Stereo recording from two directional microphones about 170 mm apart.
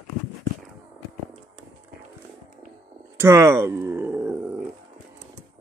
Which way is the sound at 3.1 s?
15° right (ahead or behind).